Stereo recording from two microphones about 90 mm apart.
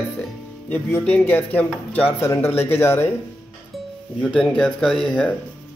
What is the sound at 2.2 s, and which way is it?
Speech, 30° left (ahead or behind).